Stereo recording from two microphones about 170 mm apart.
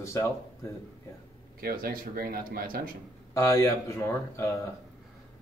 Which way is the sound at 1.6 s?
60° right (ahead or behind).